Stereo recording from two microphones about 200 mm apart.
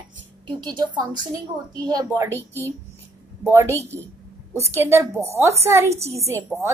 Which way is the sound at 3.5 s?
15° right (ahead or behind).